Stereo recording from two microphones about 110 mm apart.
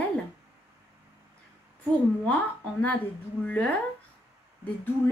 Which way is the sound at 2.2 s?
15° left (ahead or behind).